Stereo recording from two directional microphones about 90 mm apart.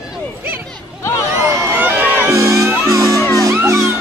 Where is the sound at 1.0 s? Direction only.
30° left (ahead or behind).